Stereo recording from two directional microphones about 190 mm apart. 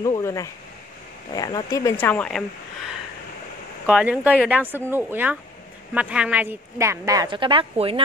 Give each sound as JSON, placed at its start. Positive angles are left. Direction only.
{"t": 0.0, "sound": "a woman's voice", "side_deg": 15}